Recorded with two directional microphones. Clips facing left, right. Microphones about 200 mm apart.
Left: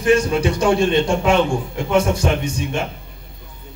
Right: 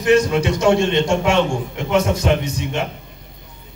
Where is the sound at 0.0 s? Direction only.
30° left (ahead or behind).